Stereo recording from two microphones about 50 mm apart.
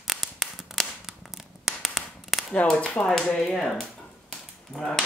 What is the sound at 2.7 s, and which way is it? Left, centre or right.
Speech, left.